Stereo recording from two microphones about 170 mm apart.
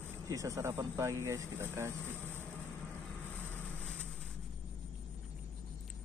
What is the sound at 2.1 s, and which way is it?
Vehicle, 10° left (ahead or behind).